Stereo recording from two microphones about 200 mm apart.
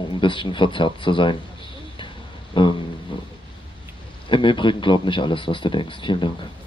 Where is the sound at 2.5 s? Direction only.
25° left (ahead or behind).